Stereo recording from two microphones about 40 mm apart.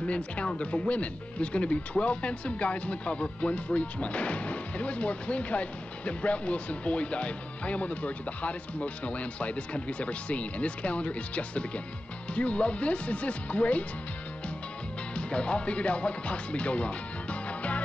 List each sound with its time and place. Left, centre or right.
0.0 s speech: left
15.1 s speech: left